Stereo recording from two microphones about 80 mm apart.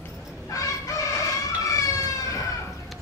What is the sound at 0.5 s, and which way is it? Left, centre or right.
Chicken, left.